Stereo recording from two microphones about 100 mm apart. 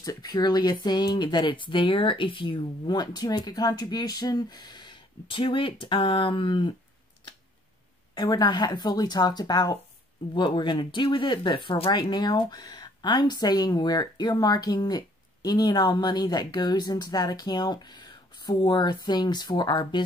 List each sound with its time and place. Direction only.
0.0 s speech: 40° left (ahead or behind); by 6.7 s 55° left (ahead or behind)
8.1 s speech: 45° left (ahead or behind)
12.0 s speech: 45° left (ahead or behind)